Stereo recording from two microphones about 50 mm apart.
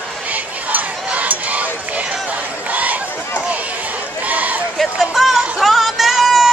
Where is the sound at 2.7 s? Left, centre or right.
Right.